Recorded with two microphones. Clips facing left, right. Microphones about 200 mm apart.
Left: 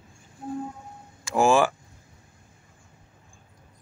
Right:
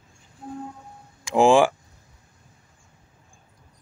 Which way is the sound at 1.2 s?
15° right (ahead or behind).